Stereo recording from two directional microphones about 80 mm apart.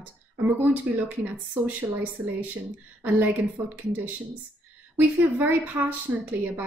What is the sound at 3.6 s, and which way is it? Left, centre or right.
Speech, right.